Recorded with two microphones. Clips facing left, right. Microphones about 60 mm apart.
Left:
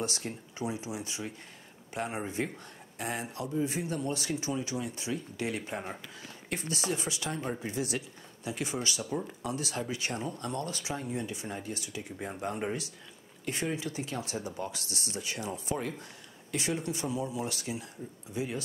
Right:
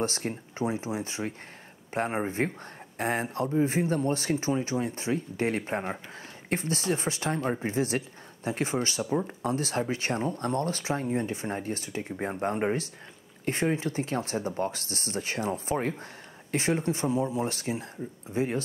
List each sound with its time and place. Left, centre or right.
0.0 s speech: right